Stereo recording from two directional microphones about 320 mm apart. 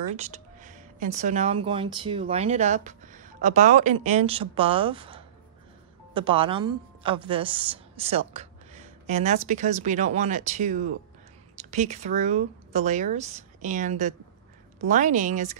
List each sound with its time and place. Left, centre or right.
0.1 s a woman's voice: right